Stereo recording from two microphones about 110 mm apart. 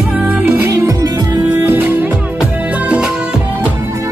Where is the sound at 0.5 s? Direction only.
25° right (ahead or behind).